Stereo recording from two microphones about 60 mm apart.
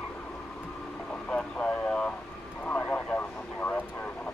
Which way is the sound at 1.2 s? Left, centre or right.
Centre.